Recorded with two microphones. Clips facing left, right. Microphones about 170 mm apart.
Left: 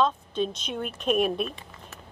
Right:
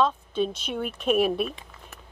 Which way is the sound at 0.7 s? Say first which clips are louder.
Right 2 dB; 5° right (ahead or behind).